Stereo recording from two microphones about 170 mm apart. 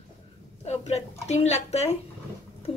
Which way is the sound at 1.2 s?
40° left (ahead or behind).